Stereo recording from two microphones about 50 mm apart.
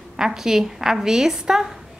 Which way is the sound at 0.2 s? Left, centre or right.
Centre.